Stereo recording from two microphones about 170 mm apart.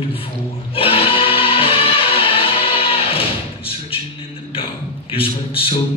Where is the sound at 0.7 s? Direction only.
35° left (ahead or behind).